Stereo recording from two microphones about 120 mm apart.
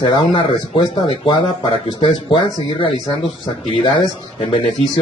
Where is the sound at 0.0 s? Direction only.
40° left (ahead or behind).